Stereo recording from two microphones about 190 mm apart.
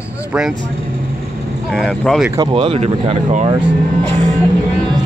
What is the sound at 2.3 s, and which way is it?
Speech, 25° right (ahead or behind).